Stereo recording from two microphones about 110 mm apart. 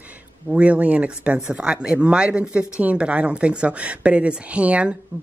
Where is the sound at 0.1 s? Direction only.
10° right (ahead or behind).